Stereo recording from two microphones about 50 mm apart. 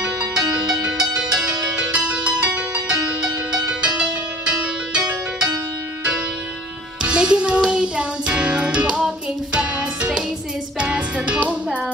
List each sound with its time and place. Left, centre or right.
0.3 s music: centre
7.0 s music: centre